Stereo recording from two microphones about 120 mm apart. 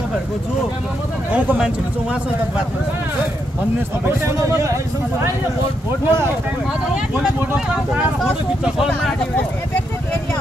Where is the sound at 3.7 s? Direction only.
20° right (ahead or behind).